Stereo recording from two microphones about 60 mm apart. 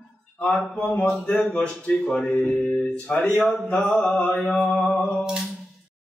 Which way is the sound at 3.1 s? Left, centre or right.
Left.